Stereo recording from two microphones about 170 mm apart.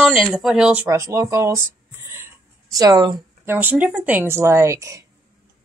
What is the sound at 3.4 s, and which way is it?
Speech, 10° right (ahead or behind).